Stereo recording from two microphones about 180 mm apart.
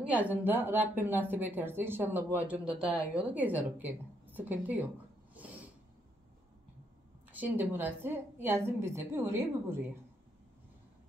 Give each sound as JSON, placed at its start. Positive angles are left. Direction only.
{"t": 0.0, "sound": "a woman's voice", "side_deg": -10}
{"t": 7.3, "sound": "a woman's voice", "side_deg": -10}